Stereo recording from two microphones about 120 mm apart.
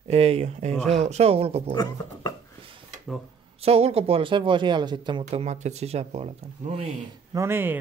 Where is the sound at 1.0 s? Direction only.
60° right (ahead or behind).